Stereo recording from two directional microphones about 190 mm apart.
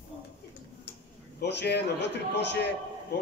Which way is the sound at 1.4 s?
65° left (ahead or behind).